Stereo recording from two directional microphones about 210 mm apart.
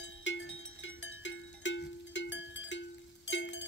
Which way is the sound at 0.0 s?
60° left (ahead or behind).